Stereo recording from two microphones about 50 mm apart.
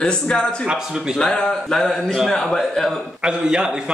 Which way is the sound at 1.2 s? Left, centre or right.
Centre.